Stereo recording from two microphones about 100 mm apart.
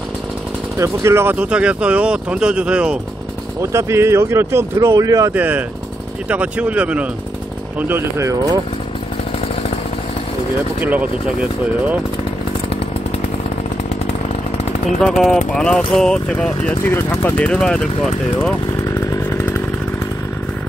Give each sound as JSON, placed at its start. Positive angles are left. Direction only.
{"t": 0.7, "sound": "speech", "side_deg": -25}
{"t": 1.3, "sound": "speech", "side_deg": -10}
{"t": 3.7, "sound": "speech", "side_deg": -25}
{"t": 5.3, "sound": "speech", "side_deg": -15}
{"t": 7.9, "sound": "speech", "side_deg": -25}
{"t": 10.8, "sound": "speech", "side_deg": -15}
{"t": 15.0, "sound": "speech", "side_deg": 5}
{"t": 16.8, "sound": "speech", "side_deg": 25}
{"t": 17.5, "sound": "speech", "side_deg": 10}
{"t": 18.4, "sound": "chainsaw", "side_deg": 30}